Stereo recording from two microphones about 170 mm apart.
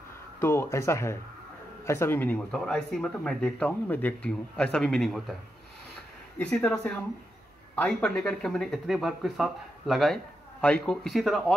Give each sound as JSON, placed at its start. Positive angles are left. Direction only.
{"t": 0.4, "sound": "speech", "side_deg": 15}
{"t": 6.3, "sound": "speech", "side_deg": 5}